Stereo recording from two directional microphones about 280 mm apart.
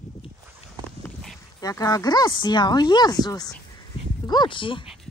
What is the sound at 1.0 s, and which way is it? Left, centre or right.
Speech, centre.